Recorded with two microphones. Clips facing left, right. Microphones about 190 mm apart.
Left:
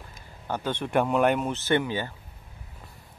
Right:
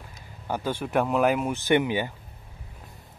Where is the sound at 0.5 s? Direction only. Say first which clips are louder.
Right 1 dB; 10° right (ahead or behind).